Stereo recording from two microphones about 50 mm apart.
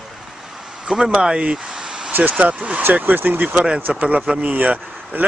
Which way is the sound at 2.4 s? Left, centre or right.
Right.